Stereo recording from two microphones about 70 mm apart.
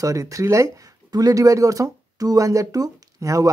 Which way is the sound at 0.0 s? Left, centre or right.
Right.